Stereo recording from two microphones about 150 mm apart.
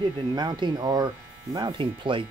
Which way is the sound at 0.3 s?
30° right (ahead or behind).